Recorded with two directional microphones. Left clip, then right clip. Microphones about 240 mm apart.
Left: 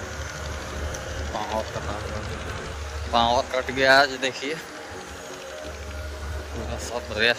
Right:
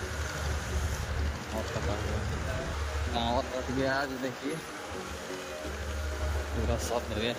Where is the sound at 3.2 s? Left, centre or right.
Left.